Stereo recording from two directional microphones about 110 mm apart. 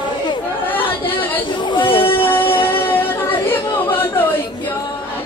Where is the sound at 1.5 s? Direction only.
45° left (ahead or behind).